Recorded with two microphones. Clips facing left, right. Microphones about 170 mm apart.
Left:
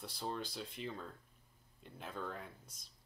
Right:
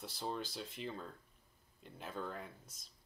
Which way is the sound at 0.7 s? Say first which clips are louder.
Right 1 dB; centre (ahead or behind).